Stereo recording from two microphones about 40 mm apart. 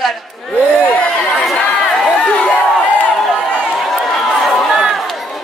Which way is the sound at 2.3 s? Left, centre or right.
Left.